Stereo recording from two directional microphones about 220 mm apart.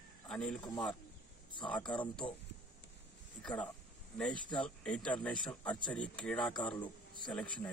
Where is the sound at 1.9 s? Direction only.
5° left (ahead or behind).